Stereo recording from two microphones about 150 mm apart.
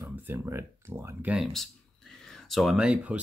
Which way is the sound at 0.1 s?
15° right (ahead or behind).